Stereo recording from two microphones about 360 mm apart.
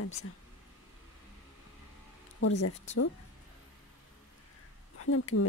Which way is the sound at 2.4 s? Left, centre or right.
Left.